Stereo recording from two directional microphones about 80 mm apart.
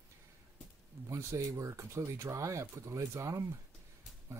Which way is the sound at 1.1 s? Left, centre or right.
Right.